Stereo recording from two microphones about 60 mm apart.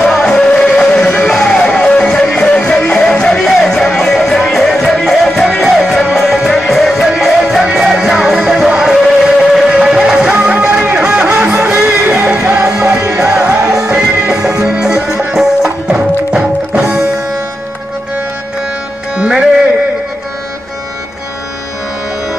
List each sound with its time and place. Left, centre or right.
0.0 s music: centre
10.4 s music: right
14.5 s music: right
14.8 s music: centre
19.1 s music: centre